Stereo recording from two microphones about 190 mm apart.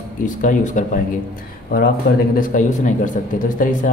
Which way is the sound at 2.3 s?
40° left (ahead or behind).